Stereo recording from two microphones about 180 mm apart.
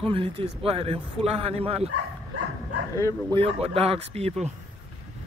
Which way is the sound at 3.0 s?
15° left (ahead or behind).